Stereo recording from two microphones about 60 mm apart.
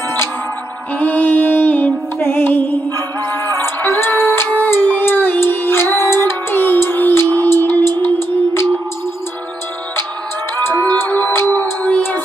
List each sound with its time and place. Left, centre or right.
0.9 s music: left
10.5 s music: left